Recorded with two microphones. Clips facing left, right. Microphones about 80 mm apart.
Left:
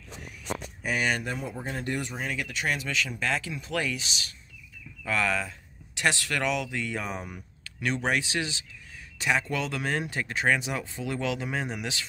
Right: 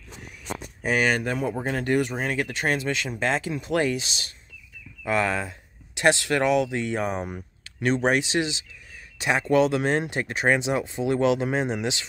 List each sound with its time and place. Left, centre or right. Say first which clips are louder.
0.9 s speech: right 5 dB; right